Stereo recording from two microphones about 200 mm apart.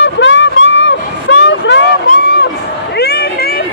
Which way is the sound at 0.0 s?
65° left (ahead or behind).